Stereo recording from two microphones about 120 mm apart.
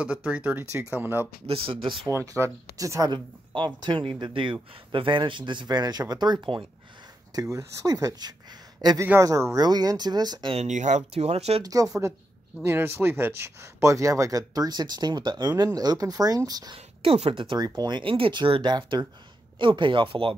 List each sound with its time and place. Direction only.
0.0 s speech: 10° right (ahead or behind)
1.4 s speech: 50° right (ahead or behind)
2.0 s speech: 25° right (ahead or behind)
3.5 s speech: 40° right (ahead or behind)
7.3 s speech: 30° right (ahead or behind)
9.0 s speech: 15° right (ahead or behind)
9.3 s speech: 30° right (ahead or behind)
10.5 s speech: 80° right; by 11.6 s 60° right (ahead or behind)
11.6 s speech: 30° right (ahead or behind)
12.6 s speech: 20° right (ahead or behind)
16.7 s a woman's voice: 50° right (ahead or behind)